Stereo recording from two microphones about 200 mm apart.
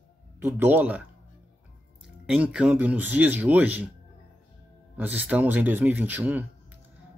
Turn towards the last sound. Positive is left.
turn(degrees=-10)  # may be behind; listen again after turning